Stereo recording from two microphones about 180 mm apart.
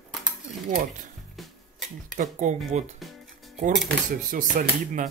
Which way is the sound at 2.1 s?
45° right (ahead or behind).